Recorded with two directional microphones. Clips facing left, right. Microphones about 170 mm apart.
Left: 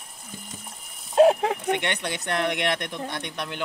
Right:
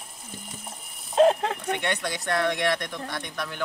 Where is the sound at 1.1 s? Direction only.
5° left (ahead or behind).